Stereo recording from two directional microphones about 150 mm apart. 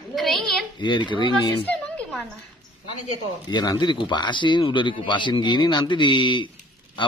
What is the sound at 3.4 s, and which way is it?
Speech, 30° left (ahead or behind).